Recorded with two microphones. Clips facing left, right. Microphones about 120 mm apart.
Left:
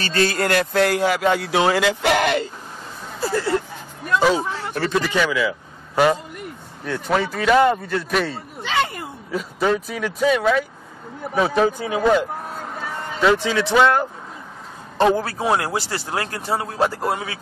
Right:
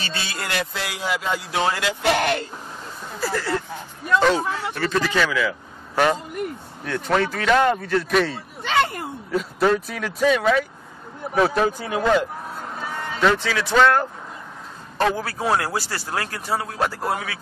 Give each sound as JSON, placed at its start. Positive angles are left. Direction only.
{"t": 0.0, "sound": "speech", "side_deg": 45}
{"t": 1.8, "sound": "speech", "side_deg": 90}
{"t": 3.2, "sound": "a sound", "side_deg": 25}
{"t": 4.1, "sound": "a man's voice", "side_deg": 5}
{"t": 13.3, "sound": "speech", "side_deg": 20}
{"t": 15.0, "sound": "speech", "side_deg": 25}